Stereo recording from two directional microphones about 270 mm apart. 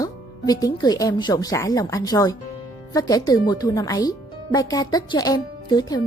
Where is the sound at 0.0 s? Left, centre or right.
Centre.